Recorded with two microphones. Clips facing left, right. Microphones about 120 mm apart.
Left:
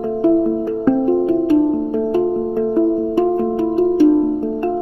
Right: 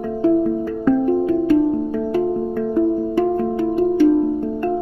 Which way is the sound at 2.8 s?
30° left (ahead or behind).